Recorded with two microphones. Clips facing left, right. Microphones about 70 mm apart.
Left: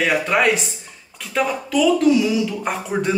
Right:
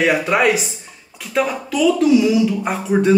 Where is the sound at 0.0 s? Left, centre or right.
Centre.